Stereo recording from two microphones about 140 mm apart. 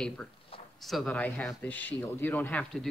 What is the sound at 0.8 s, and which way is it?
Speech, 5° left (ahead or behind).